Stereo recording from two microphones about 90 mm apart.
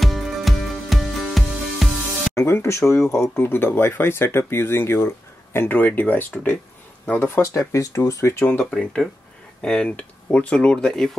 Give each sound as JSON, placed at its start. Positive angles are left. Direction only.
{"t": 0.0, "sound": "music", "side_deg": 0}
{"t": 2.3, "sound": "speech", "side_deg": 30}
{"t": 8.5, "sound": "speech", "side_deg": 15}
{"t": 8.7, "sound": "speech", "side_deg": 5}